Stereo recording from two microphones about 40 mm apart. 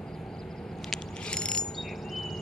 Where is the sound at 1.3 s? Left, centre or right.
Left.